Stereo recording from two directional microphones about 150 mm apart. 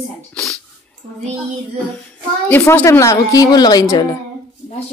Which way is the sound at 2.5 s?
15° left (ahead or behind).